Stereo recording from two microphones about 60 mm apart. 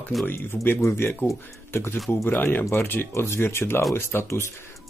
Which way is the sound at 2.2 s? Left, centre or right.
Left.